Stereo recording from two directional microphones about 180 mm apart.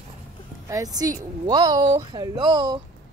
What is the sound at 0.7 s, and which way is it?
Speech, 20° right (ahead or behind).